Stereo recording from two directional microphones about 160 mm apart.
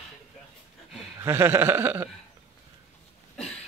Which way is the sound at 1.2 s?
15° right (ahead or behind).